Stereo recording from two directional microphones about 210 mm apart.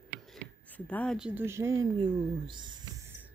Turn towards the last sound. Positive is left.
turn(degrees=-20)  # may be behind; listen again after turning